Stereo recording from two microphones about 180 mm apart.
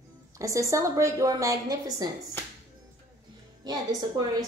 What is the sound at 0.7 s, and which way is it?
A woman's voice, 15° right (ahead or behind).